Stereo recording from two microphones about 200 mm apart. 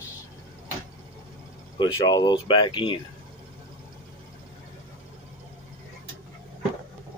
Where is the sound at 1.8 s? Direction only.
20° left (ahead or behind).